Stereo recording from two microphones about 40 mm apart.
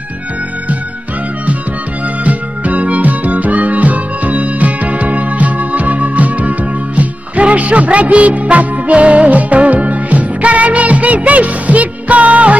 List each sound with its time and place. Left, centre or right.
2.2 s music: right